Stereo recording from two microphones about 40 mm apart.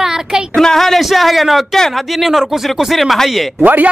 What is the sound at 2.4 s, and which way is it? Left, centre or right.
Speech, centre.